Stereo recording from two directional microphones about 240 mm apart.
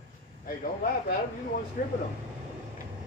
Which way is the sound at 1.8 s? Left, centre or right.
Left.